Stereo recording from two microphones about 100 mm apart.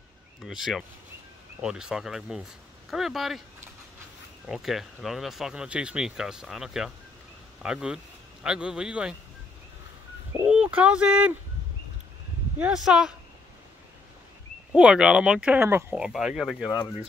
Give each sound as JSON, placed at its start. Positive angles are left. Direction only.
{"t": 0.4, "sound": "speech", "side_deg": -5}
{"t": 4.5, "sound": "speech", "side_deg": -5}
{"t": 10.4, "sound": "speech", "side_deg": -10}
{"t": 12.5, "sound": "speech", "side_deg": -10}
{"t": 14.7, "sound": "speech", "side_deg": -10}
{"t": 15.6, "sound": "speech", "side_deg": -25}
{"t": 16.0, "sound": "speech", "side_deg": -5}